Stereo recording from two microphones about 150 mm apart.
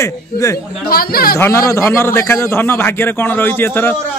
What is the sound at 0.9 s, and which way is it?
Speech, 85° left.